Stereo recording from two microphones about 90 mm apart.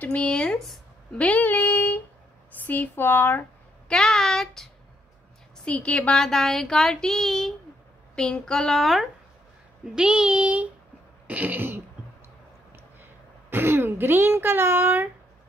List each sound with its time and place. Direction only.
0.0 s speech: 15° left (ahead or behind)
1.1 s a sound: 15° left (ahead or behind)
2.6 s speech: 20° left (ahead or behind)
3.9 s a sound: 5° left (ahead or behind)
5.7 s speech: 15° left (ahead or behind)
9.9 s child singing: 10° right (ahead or behind)
11.2 s throat clearing: 20° right (ahead or behind)
13.5 s speech: 25° right (ahead or behind)